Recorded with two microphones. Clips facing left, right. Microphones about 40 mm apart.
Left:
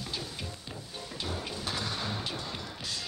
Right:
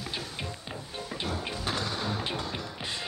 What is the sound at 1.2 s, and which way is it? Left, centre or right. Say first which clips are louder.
Music: right 3 dB; right.